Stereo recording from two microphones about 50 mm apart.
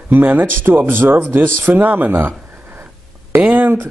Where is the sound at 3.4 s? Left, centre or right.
Right.